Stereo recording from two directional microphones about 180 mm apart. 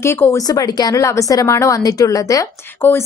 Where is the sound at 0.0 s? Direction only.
15° left (ahead or behind).